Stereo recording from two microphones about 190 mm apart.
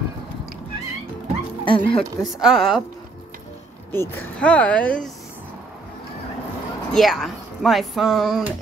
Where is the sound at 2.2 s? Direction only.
Centre (ahead or behind).